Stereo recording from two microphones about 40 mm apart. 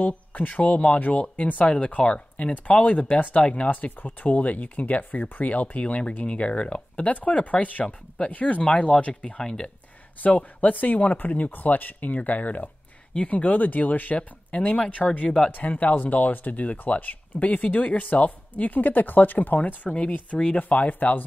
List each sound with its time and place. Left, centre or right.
0.0 s speech: left
2.5 s speech: left
3.8 s speech: left
8.9 s speech: centre
10.2 s speech: left
14.1 s speech: left
19.9 s speech: left
20.6 s speech: left